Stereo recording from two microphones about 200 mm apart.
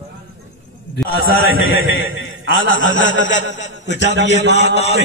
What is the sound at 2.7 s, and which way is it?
Speech, 70° left (ahead or behind).